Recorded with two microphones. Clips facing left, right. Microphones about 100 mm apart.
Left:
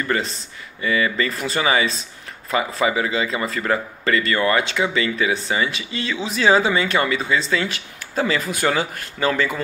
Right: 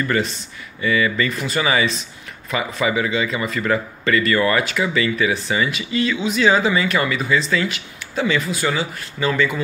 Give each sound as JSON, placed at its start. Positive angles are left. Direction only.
{"t": 0.0, "sound": "speech", "side_deg": 30}